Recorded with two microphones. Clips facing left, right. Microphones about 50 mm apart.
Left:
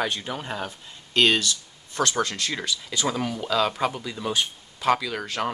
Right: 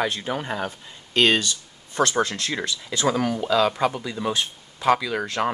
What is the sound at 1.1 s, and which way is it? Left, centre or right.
Speech, right.